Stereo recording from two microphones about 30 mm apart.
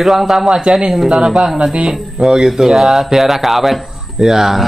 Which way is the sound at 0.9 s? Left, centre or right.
Centre.